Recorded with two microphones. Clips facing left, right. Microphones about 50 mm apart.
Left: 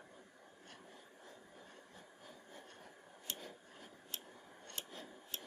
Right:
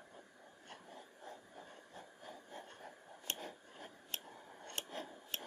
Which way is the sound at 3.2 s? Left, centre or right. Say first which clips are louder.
Right 4 dB; right.